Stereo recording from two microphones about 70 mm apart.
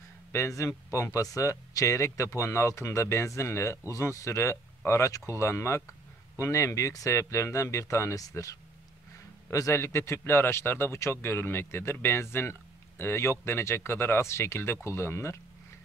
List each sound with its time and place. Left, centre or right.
0.3 s a man's voice: left